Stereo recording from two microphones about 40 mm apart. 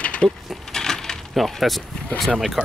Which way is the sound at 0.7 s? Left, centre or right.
Centre.